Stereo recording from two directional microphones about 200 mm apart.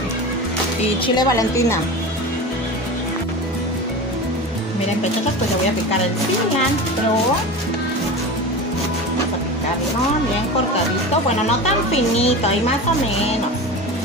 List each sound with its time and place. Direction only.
1.0 s a woman's voice: 20° left (ahead or behind)
11.4 s a woman's voice: 30° left (ahead or behind)